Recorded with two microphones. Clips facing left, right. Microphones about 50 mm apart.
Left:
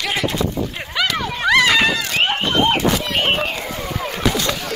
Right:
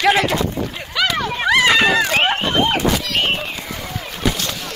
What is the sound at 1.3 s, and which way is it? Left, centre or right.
Run, centre.